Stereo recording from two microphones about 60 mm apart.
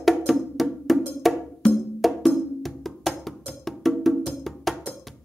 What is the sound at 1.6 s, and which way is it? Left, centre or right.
Music, centre.